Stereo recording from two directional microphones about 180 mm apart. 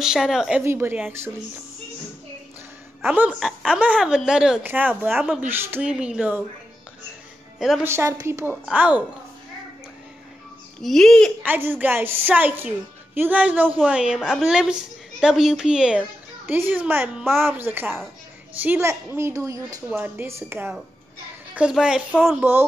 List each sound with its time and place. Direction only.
0.0 s a woman's voice: 5° right (ahead or behind)
3.0 s a woman's voice: 10° right (ahead or behind)
7.5 s speech: centre (ahead or behind)
7.8 s a woman's voice: 15° right (ahead or behind)
10.8 s a woman's voice: centre (ahead or behind)
11.4 s a woman's voice: 10° right (ahead or behind)